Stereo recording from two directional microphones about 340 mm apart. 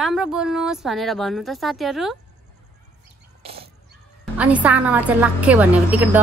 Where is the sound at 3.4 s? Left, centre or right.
Centre.